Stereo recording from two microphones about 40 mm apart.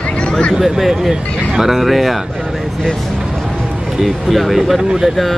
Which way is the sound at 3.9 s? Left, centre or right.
Centre.